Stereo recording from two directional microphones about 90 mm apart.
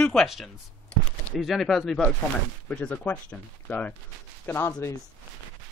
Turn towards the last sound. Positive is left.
turn(degrees=30)  # may be behind; listen again after turning